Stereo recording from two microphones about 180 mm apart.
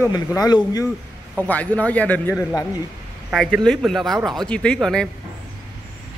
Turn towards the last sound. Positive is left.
turn(degrees=5)  # may be behind; listen again after turning